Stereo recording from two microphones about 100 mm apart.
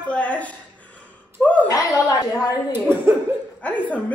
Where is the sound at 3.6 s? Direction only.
15° left (ahead or behind).